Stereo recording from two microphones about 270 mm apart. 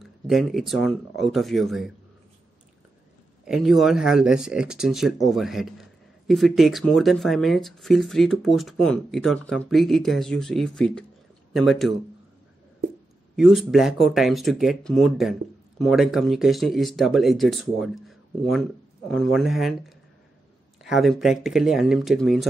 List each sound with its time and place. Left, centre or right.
0.0 s a man's voice: centre
3.4 s a man's voice: centre
13.4 s a man's voice: centre
20.8 s a man's voice: centre